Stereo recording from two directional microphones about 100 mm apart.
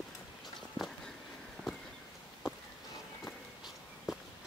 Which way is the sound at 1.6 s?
Centre (ahead or behind).